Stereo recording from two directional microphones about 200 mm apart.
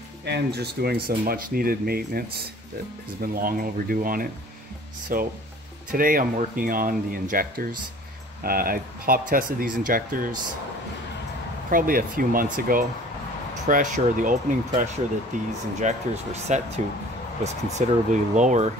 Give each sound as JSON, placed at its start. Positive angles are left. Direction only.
{"t": 0.2, "sound": "speech", "side_deg": -55}
{"t": 11.7, "sound": "speech", "side_deg": -45}